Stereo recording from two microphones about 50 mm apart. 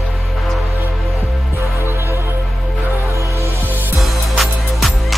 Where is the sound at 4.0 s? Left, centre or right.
Centre.